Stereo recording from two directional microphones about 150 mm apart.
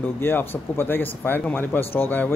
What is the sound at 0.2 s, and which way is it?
Speech, 15° left (ahead or behind).